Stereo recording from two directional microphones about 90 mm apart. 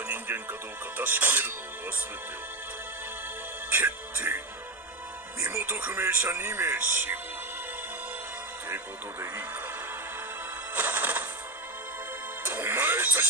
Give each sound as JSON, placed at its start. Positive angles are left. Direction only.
{"t": 0.0, "sound": "music", "side_deg": -20}
{"t": 3.7, "sound": "speech", "side_deg": -25}
{"t": 5.4, "sound": "speech", "side_deg": -25}
{"t": 8.6, "sound": "speech", "side_deg": -25}
{"t": 10.7, "sound": "music", "side_deg": -25}
{"t": 12.4, "sound": "music", "side_deg": -25}